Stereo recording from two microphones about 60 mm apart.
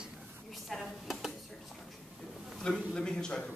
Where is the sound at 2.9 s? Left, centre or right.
Centre.